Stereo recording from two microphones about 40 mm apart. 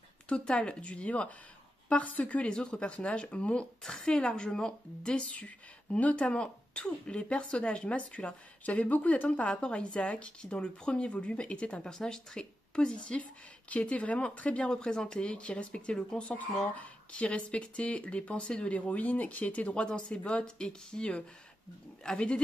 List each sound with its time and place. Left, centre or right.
0.3 s speech: left
5.3 s speech: left
8.6 s speech: left
11.8 s speech: centre
12.7 s speech: left
14.6 s speech: centre
16.7 s speech: left
19.7 s speech: left